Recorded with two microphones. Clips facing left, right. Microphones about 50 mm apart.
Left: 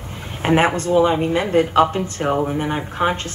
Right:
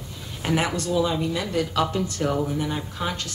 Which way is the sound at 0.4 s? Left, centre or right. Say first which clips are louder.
Left 8 dB; left.